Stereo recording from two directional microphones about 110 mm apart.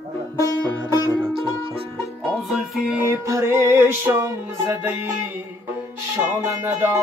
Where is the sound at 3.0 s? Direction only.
25° right (ahead or behind).